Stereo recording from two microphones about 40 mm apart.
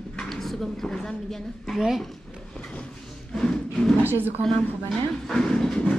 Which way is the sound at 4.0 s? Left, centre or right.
Right.